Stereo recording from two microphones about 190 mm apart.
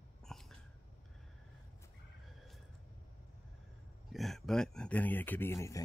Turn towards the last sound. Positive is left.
turn(degrees=15)  # may be behind; listen again after turning